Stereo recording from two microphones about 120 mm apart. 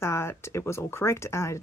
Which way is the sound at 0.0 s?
20° left (ahead or behind).